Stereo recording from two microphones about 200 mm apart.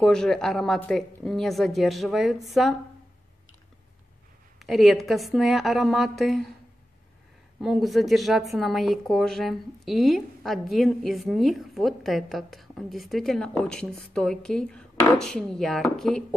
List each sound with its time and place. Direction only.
0.0 s speech: 5° left (ahead or behind)
4.6 s speech: centre (ahead or behind)
7.6 s speech: centre (ahead or behind)